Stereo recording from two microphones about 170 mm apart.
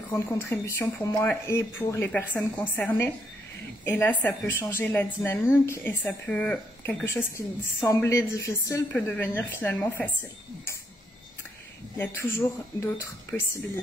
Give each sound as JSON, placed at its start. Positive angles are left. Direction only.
{"t": 0.1, "sound": "a woman's voice", "side_deg": 15}
{"t": 12.4, "sound": "a woman's voice", "side_deg": 15}